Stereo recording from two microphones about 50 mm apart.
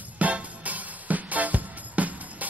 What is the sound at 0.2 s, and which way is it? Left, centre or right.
Music, right.